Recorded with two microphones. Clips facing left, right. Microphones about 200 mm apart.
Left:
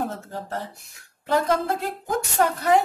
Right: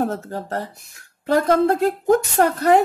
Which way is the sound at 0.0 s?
45° right (ahead or behind).